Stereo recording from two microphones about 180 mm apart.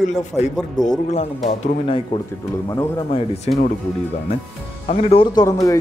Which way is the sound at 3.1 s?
35° left (ahead or behind).